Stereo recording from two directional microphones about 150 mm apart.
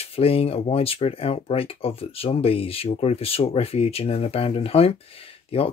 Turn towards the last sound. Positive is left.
turn(degrees=40)  # may be behind; listen again after turning